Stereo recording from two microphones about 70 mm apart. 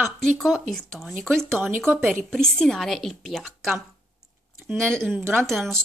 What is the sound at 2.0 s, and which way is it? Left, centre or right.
Speech, centre.